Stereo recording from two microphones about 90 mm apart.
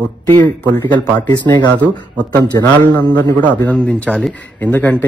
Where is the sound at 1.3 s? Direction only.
55° left (ahead or behind).